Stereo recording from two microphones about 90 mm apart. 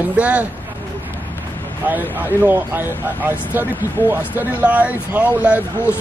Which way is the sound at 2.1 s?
20° right (ahead or behind).